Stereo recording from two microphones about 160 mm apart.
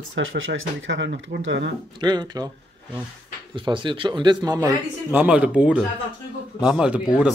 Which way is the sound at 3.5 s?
30° right (ahead or behind).